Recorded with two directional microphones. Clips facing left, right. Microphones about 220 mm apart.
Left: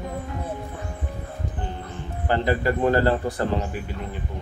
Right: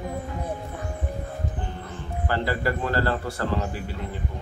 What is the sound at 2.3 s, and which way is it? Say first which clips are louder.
A man's voice: left 4 dB; 20° left (ahead or behind).